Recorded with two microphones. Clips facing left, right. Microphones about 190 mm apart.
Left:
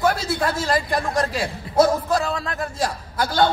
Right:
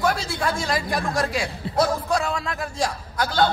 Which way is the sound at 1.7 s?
30° right (ahead or behind).